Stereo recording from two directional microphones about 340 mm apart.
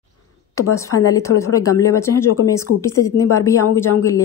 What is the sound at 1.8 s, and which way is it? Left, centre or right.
A woman's voice, centre.